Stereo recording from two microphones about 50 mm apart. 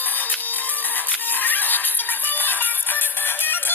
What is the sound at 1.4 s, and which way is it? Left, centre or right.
Music, left.